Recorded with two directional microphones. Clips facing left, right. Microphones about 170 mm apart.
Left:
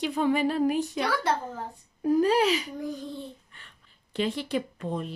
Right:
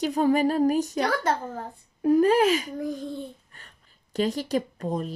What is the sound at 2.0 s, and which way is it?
Speech, 60° right (ahead or behind).